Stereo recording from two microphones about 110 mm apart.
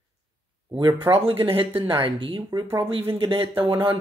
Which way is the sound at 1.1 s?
55° right (ahead or behind).